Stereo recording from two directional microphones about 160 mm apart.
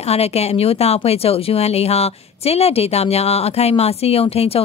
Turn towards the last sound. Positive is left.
turn(degrees=40)  # may be behind; listen again after turning